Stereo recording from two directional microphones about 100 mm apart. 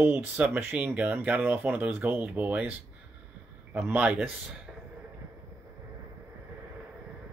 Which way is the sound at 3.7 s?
15° right (ahead or behind).